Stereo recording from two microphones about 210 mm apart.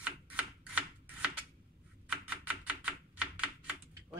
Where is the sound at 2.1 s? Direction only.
5° right (ahead or behind).